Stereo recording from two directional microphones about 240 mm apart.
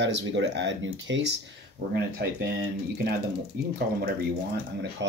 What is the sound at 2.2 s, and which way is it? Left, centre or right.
Speech, right.